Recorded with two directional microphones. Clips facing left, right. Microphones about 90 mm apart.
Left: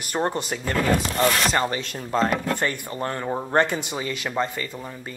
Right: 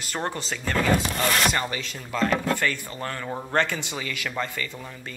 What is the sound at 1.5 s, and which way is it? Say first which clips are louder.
Speech: left 4 dB; 35° left (ahead or behind).